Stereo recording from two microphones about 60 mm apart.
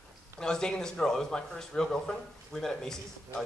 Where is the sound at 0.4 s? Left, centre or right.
Centre.